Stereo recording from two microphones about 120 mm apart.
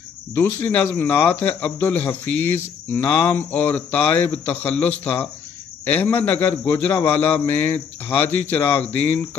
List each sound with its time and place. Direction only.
0.4 s speech: 15° left (ahead or behind)